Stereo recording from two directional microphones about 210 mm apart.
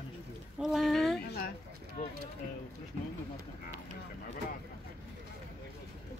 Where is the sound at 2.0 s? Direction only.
40° left (ahead or behind).